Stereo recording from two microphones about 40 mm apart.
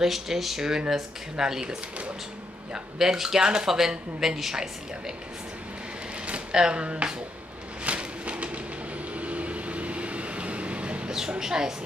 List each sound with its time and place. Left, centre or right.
0.0 s speech: centre
3.0 s speech: centre
6.5 s music: right
7.8 s train: right
9.1 s vehicle: right
11.1 s speech: centre